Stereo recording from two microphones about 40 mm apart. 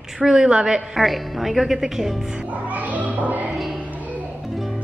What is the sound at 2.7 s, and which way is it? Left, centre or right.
Music, right.